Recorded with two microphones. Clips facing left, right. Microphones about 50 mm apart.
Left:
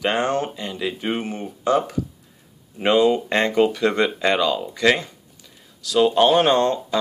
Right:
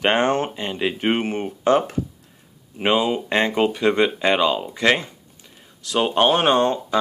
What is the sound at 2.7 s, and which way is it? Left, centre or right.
Speech, centre.